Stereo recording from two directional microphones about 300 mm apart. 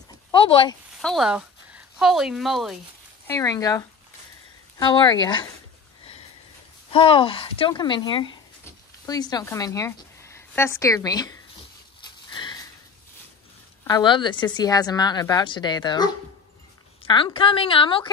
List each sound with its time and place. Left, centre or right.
0.3 s a sound: centre
0.9 s speech: centre
3.3 s a woman's voice: centre
6.9 s a woman's voice: centre
12.4 s sniff: centre
13.8 s a woman's voice: centre